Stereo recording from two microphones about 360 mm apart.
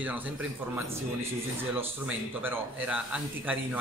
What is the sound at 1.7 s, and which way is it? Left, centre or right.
A man's voice, centre.